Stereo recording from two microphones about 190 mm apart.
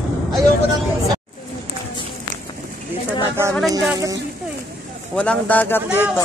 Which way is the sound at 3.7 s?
20° right (ahead or behind).